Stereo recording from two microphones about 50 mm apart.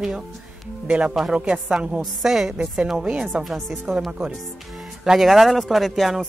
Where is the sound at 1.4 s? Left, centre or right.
Right.